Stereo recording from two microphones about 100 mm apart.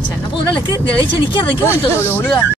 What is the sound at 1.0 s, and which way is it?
Speech, 55° left (ahead or behind).